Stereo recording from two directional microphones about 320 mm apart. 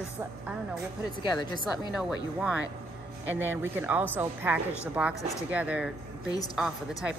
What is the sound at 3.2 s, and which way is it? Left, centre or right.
Speech, centre.